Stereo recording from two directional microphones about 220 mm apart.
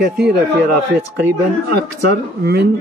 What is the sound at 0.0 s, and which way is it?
Speech, 50° right (ahead or behind).